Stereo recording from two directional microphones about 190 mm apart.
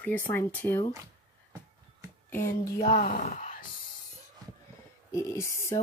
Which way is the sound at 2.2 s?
10° left (ahead or behind).